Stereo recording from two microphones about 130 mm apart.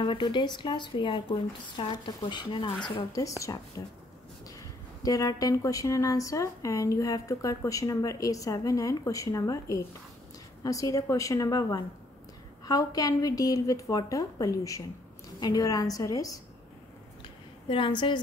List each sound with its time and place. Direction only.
0.0 s speech: 35° left (ahead or behind)
17.6 s speech: 40° left (ahead or behind)